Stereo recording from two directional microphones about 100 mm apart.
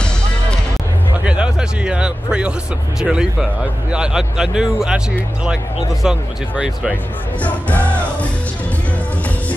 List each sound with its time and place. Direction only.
1.2 s speech: 10° right (ahead or behind)
6.0 s speech: 10° right (ahead or behind)
7.4 s music: 15° left (ahead or behind)